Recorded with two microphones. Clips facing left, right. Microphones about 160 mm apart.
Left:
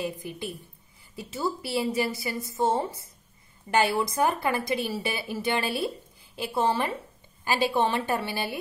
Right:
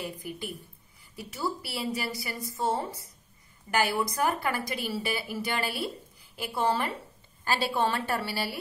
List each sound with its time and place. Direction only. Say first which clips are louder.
0.2 s a woman's voice: left 2 dB; 20° left (ahead or behind)